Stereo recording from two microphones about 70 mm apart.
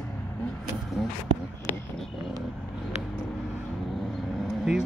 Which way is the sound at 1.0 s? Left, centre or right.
Centre.